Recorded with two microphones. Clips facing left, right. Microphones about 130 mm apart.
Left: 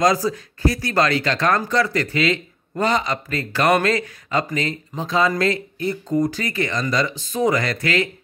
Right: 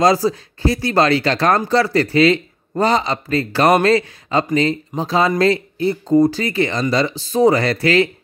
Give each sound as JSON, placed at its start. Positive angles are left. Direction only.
{"t": 0.0, "sound": "speech", "side_deg": -30}